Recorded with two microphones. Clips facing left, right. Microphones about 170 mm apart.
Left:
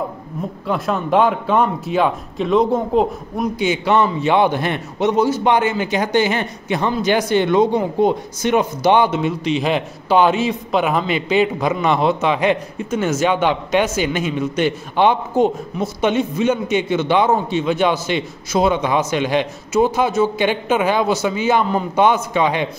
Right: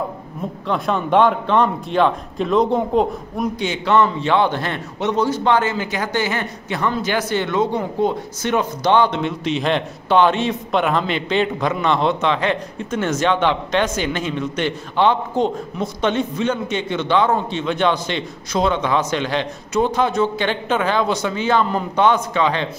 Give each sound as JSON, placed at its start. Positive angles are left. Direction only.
{"t": 0.7, "sound": "a man's voice", "side_deg": 0}